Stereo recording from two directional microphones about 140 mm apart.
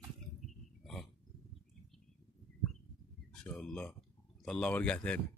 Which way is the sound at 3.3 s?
5° left (ahead or behind).